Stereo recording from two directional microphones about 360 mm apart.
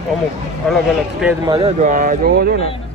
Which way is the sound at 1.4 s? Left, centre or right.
Centre.